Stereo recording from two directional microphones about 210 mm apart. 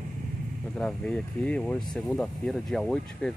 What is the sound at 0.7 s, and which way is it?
Speech, 5° left (ahead or behind).